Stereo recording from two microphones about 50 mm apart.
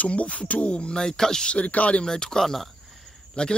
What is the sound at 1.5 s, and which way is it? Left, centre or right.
Speech, left.